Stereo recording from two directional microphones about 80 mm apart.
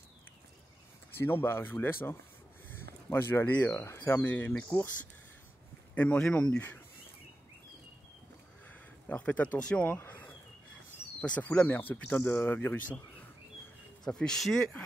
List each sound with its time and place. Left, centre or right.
1.1 s speech: left
4.2 s speech: centre
5.9 s speech: centre
8.6 s speech: centre
9.9 s a sound: left
11.1 s speech: centre
14.0 s speech: centre